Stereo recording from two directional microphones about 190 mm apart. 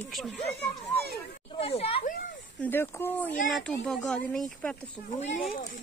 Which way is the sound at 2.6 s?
10° left (ahead or behind).